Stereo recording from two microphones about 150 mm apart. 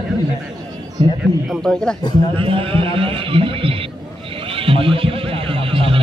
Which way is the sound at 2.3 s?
35° right (ahead or behind).